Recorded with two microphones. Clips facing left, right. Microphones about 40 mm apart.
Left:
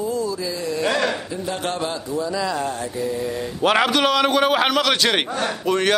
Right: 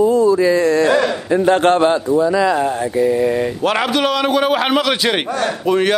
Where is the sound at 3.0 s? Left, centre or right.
Right.